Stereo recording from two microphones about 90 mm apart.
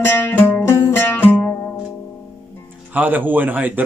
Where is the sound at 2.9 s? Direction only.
20° right (ahead or behind).